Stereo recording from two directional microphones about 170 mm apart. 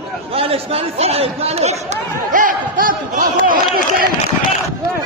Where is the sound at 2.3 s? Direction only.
55° right (ahead or behind).